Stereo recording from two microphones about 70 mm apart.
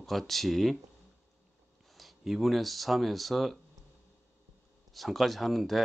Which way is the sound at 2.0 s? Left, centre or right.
Centre.